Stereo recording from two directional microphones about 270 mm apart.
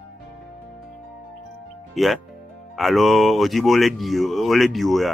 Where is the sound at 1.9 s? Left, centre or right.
Centre.